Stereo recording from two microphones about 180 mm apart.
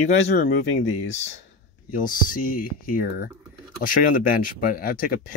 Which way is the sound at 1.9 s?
50° left (ahead or behind).